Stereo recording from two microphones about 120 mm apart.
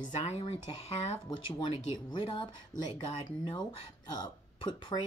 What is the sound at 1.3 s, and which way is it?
Speech, 45° left (ahead or behind).